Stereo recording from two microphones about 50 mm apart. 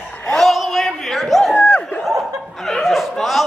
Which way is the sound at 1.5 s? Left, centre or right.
Left.